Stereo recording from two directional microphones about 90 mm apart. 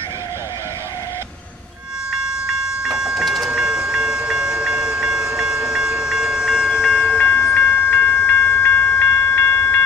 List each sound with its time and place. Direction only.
2.8 s train: centre (ahead or behind)
7.0 s train: 20° left (ahead or behind)